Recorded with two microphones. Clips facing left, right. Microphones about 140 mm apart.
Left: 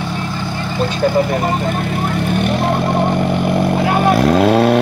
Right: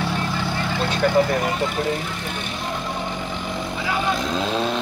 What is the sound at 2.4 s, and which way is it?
Vehicle, 65° left (ahead or behind).